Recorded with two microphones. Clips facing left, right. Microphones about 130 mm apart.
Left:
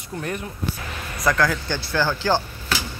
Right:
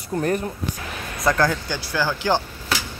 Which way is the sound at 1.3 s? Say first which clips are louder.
Right 1 dB; 25° right (ahead or behind).